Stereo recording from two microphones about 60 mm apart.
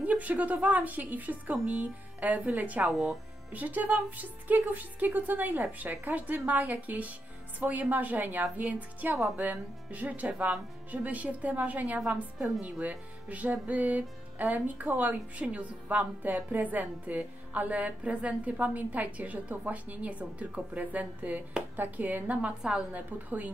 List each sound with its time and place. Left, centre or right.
0.0 s a woman's voice: right
2.9 s speech: centre
3.5 s a woman's voice: right
22.6 s speech: centre
22.9 s a woman's voice: right